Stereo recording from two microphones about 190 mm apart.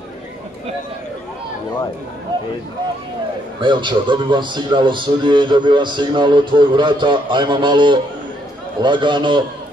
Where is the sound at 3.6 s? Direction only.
25° right (ahead or behind).